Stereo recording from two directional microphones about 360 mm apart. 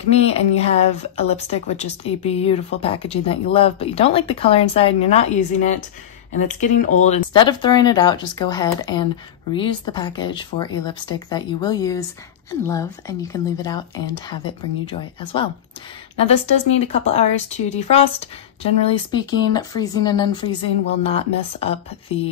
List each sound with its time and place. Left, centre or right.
0.1 s a woman's voice: centre